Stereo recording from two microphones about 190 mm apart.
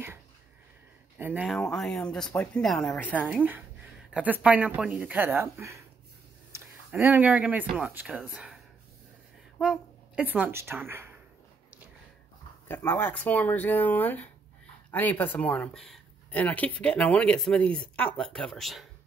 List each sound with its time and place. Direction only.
1.1 s speech: 5° right (ahead or behind)
3.3 s speech: 10° right (ahead or behind)
9.6 s a woman's voice: 5° right (ahead or behind)
12.6 s speech: 10° left (ahead or behind)